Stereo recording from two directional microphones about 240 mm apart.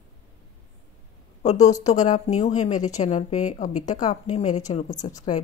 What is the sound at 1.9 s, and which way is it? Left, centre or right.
A woman's voice, left.